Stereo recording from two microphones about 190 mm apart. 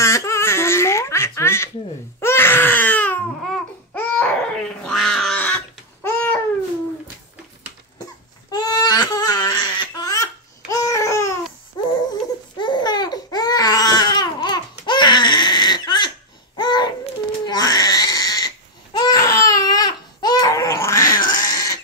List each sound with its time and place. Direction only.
0.0 s baby laughter: 15° left (ahead or behind)
2.1 s baby cry: 10° left (ahead or behind)
8.0 s crying: 20° left (ahead or behind)
11.7 s laughter: 20° left (ahead or behind)
12.5 s baby cry: 25° left (ahead or behind)
16.5 s babbling: 20° left (ahead or behind)
17.5 s a sound: 20° left (ahead or behind)
18.9 s baby cry: 20° left (ahead or behind)
21.1 s cat: 45° left (ahead or behind)
21.4 s cough: 15° left (ahead or behind)